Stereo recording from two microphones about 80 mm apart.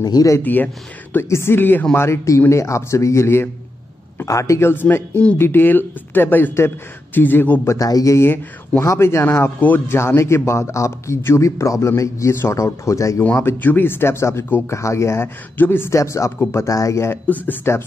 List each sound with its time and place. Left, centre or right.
0.0 s speech: left
0.4 s speech: left
2.0 s speech: left
7.6 s speech: left
13.2 s speech: centre; by 15.2 s left
15.5 s speech: left
15.9 s speech: left